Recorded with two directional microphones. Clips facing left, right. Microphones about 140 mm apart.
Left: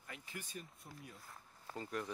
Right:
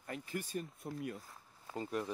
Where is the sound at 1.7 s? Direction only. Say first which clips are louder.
Right 4 dB; 20° right (ahead or behind).